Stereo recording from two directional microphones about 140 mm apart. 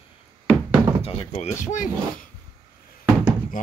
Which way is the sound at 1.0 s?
50° left (ahead or behind).